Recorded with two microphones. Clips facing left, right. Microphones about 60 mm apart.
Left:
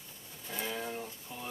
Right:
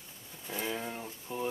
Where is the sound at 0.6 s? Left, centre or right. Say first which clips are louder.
Even; centre.